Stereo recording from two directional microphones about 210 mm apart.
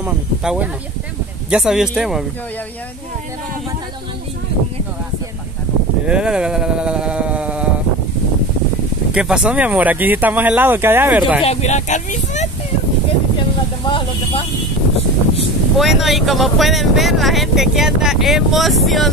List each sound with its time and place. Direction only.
0.0 s speech: 5° right (ahead or behind)
6.0 s speech: 5° right (ahead or behind)
9.1 s speech: 5° right (ahead or behind)
11.4 s speech: 35° left (ahead or behind)
13.8 s vehicle: 25° left (ahead or behind)
15.8 s speech: centre (ahead or behind)